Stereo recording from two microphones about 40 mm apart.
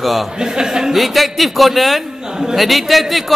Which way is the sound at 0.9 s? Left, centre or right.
Centre.